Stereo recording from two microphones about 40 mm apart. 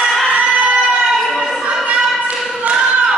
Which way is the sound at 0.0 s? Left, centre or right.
Centre.